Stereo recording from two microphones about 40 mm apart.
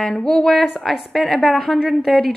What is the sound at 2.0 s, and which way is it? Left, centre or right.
Speech, centre.